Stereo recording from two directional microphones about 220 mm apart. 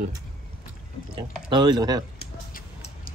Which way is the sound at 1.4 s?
20° right (ahead or behind).